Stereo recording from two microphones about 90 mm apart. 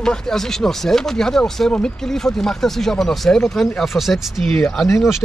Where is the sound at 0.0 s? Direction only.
5° left (ahead or behind).